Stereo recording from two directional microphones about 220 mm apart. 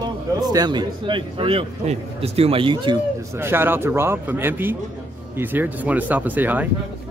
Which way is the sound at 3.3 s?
10° right (ahead or behind).